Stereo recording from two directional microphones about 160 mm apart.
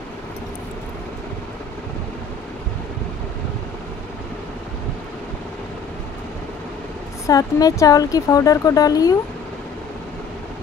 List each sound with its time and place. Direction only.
7.2 s speech: 20° left (ahead or behind)